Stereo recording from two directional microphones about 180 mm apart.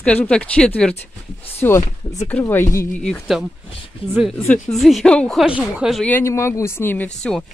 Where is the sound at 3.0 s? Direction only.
Centre (ahead or behind).